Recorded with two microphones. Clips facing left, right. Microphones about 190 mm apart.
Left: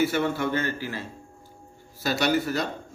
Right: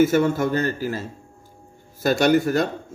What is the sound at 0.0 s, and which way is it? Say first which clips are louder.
A man's voice: right 6 dB; 45° right (ahead or behind).